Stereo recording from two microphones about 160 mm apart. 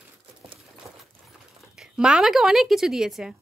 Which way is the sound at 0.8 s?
20° right (ahead or behind).